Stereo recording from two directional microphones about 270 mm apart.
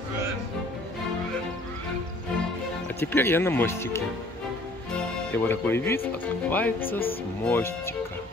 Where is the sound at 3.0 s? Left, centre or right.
Centre.